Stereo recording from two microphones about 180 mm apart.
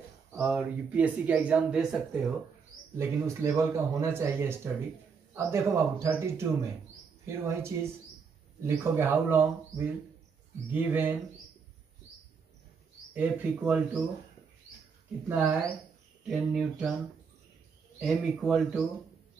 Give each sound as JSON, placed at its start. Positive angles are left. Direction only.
{"t": 0.4, "sound": "speech", "side_deg": -5}
{"t": 3.0, "sound": "a man's voice", "side_deg": -15}
{"t": 10.7, "sound": "a man's voice", "side_deg": -10}
{"t": 13.1, "sound": "a man's voice", "side_deg": -10}
{"t": 15.2, "sound": "a man's voice", "side_deg": -10}
{"t": 18.0, "sound": "speech", "side_deg": 0}